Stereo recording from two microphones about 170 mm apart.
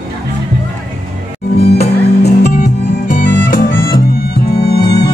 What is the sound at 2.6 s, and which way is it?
Music, 50° left (ahead or behind).